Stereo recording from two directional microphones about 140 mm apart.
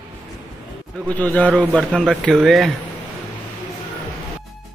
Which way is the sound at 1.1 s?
10° left (ahead or behind).